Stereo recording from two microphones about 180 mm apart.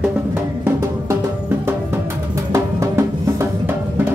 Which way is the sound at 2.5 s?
15° right (ahead or behind).